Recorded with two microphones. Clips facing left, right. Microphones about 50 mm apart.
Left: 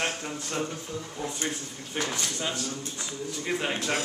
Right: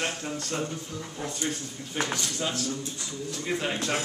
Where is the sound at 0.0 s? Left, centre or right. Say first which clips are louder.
Even; centre.